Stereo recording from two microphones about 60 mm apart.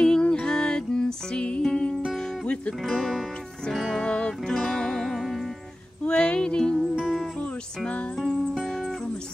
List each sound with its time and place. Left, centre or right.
0.0 s music: centre
2.8 s speech: centre
3.7 s music: centre
4.0 s music: centre
6.0 s a sound: centre
7.8 s music: centre